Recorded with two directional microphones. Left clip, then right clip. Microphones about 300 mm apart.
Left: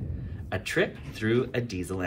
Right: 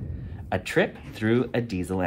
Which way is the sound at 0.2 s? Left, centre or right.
Right.